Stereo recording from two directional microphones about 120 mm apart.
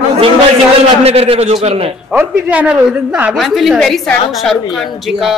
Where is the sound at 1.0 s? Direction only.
55° right (ahead or behind).